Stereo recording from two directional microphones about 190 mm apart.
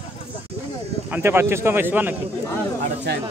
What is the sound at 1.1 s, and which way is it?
A man's voice, 10° right (ahead or behind).